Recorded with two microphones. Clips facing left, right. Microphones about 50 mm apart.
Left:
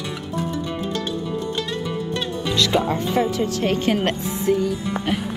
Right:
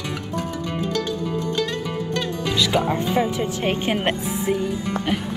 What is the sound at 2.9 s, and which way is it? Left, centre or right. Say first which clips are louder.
Speech: left 1 dB; centre.